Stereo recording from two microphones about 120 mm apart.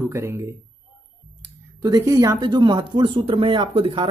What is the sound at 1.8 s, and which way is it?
Speech, 30° right (ahead or behind).